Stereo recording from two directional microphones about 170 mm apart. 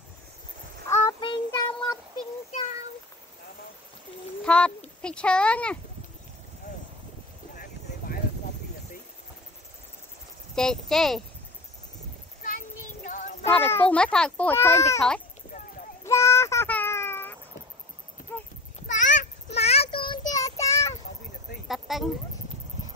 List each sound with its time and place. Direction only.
0.8 s child singing: 15° left (ahead or behind)
1.2 s child singing: 30° left (ahead or behind)
4.4 s a child's voice: 5° left (ahead or behind)
10.5 s speech: 5° left (ahead or behind)
12.4 s child singing: 50° left (ahead or behind)
13.5 s a child's voice: 10° left (ahead or behind)
16.0 s a sound: 15° left (ahead or behind)
18.9 s child singing: 45° left (ahead or behind); by 20.6 s 20° left (ahead or behind)
21.6 s a sound: centre (ahead or behind)